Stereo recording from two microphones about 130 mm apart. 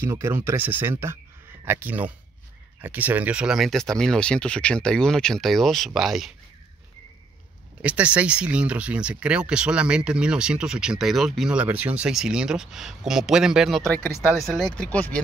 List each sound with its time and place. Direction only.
0.0 s speech: 20° right (ahead or behind); by 6.3 s centre (ahead or behind)
7.8 s speech: 10° right (ahead or behind); by 15.2 s 10° left (ahead or behind)